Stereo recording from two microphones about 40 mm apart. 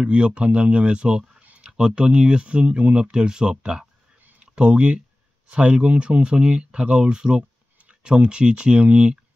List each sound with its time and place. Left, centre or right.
0.0 s speech: right